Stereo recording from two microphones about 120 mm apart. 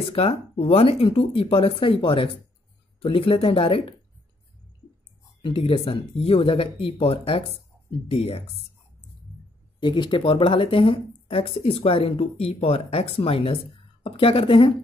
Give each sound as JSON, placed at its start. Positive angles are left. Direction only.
{"t": 0.0, "sound": "speech", "side_deg": 55}
{"t": 5.4, "sound": "speech", "side_deg": 50}
{"t": 9.8, "sound": "speech", "side_deg": 45}